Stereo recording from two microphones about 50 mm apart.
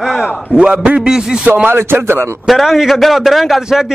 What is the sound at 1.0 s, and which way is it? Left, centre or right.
Speech, centre.